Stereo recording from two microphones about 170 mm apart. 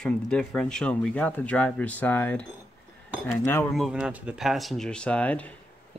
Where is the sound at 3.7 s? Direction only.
Centre (ahead or behind).